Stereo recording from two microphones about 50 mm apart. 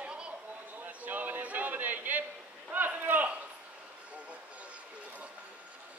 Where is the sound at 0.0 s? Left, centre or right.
Right.